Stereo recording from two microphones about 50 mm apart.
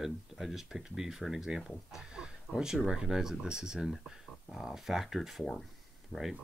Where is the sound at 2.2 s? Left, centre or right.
Centre.